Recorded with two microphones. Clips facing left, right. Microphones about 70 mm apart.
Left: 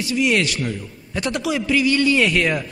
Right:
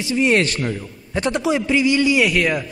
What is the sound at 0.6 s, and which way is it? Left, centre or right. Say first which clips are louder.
A man's voice: right 2 dB; right.